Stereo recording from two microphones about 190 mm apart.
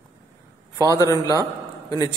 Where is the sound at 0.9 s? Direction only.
15° left (ahead or behind).